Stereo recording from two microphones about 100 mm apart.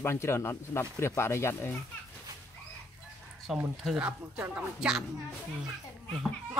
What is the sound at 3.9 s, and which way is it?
Speech, 15° right (ahead or behind).